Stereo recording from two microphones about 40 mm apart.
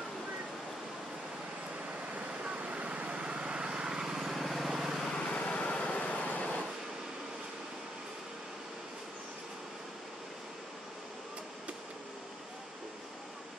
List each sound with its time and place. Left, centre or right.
2.1 s vehicle: right; by 5.1 s centre
5.4 s vehicle: left